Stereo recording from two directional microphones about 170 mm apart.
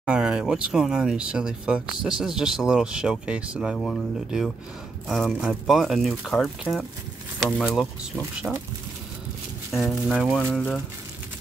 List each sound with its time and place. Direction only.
0.0 s speech: 5° right (ahead or behind)
9.7 s speech: centre (ahead or behind)